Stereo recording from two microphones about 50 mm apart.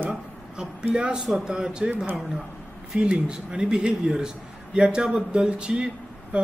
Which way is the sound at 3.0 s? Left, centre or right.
Centre.